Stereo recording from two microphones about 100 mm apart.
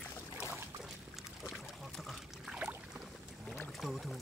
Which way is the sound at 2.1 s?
5° right (ahead or behind).